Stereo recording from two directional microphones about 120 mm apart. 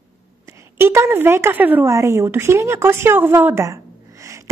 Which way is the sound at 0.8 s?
20° right (ahead or behind).